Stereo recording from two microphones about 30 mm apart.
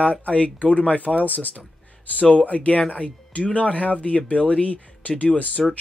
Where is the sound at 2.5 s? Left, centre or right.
Left.